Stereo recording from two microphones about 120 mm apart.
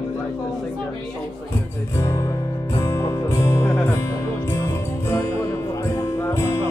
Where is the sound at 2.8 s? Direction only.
30° left (ahead or behind).